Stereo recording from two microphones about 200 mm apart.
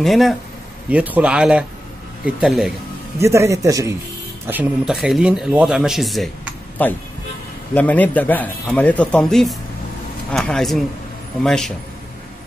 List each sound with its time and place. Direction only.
0.0 s speech: centre (ahead or behind)
3.2 s speech: 15° right (ahead or behind)
4.5 s a man's voice: 5° right (ahead or behind)